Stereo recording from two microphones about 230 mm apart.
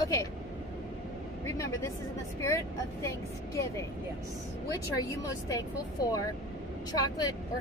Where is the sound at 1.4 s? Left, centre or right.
Centre.